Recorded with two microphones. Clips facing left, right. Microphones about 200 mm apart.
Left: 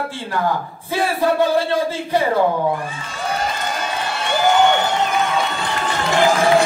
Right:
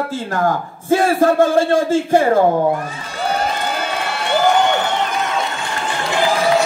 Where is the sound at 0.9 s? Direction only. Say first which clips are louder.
Right 5 dB; 45° right (ahead or behind).